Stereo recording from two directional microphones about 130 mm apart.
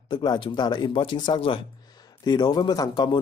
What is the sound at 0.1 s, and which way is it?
Speech, 35° left (ahead or behind).